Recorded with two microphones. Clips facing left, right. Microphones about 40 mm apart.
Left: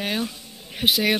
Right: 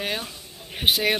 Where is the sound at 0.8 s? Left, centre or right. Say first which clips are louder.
Left 1 dB; centre.